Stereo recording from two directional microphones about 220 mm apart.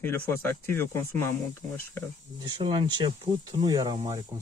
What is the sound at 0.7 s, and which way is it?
Speech, 10° left (ahead or behind).